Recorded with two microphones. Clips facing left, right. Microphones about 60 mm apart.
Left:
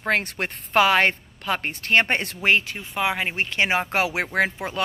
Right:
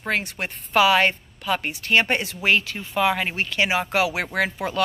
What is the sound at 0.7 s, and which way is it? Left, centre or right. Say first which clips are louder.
A woman's voice: even; left.